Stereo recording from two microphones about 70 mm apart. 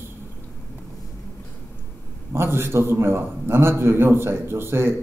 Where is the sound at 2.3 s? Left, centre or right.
Right.